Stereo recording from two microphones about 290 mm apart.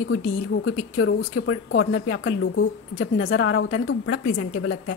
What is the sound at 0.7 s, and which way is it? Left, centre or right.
A woman's voice, left.